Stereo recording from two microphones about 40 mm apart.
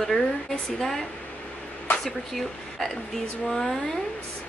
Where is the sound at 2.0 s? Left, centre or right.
Centre.